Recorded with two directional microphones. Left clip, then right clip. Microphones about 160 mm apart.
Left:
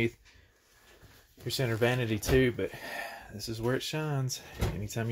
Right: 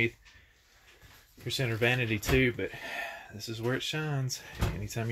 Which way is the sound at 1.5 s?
5° left (ahead or behind).